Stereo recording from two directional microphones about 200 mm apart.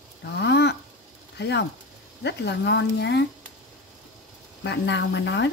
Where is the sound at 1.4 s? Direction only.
60° left (ahead or behind).